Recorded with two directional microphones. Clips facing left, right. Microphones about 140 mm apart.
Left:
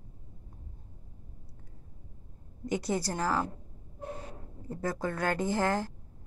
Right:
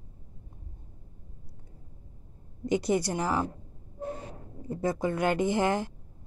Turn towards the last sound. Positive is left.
turn(degrees=-20)  # may be behind; listen again after turning